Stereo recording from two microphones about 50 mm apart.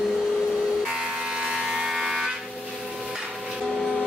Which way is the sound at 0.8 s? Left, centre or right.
Centre.